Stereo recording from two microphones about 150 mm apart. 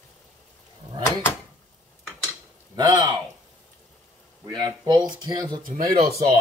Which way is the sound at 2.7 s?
30° right (ahead or behind).